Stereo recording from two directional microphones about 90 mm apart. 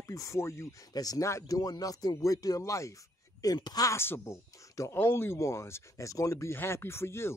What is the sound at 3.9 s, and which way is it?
Speech, 25° left (ahead or behind).